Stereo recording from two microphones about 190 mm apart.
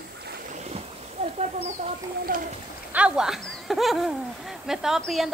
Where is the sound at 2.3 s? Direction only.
50° right (ahead or behind).